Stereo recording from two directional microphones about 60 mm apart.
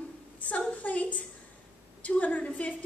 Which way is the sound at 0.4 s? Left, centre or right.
Left.